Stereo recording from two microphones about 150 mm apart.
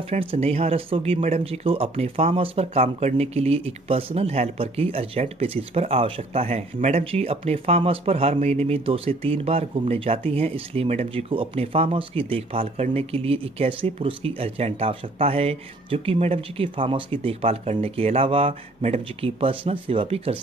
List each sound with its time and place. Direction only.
0.1 s speech: 40° right (ahead or behind)